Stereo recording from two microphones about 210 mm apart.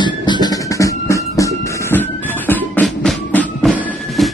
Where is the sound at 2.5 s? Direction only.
5° left (ahead or behind).